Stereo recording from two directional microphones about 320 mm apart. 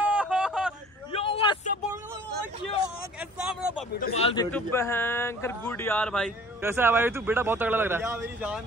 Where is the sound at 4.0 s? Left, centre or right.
Centre.